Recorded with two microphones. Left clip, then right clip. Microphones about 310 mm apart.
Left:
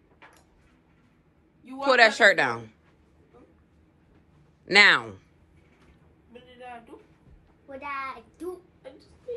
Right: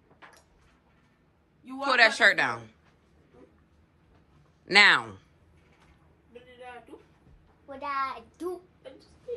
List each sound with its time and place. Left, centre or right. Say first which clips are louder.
1.6 s a man's voice: left 3 dB; centre
4.6 s a man's voice: left 2 dB; centre
7.8 s a sound: right 3 dB; centre